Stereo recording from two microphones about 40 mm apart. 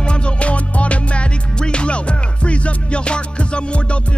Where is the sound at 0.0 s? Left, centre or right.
Left.